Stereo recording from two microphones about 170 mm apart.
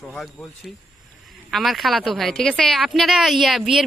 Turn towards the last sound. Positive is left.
turn(degrees=0)  # may be behind; listen again after turning